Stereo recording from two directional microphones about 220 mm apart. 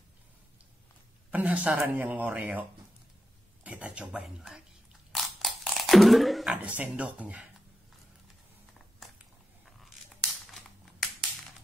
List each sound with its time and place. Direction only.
1.3 s speech: 5° right (ahead or behind)
3.6 s speech: 5° right (ahead or behind)
9.7 s tearing: centre (ahead or behind)